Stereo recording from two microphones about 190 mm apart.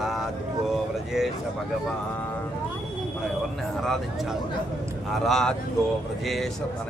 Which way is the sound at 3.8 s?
Centre (ahead or behind).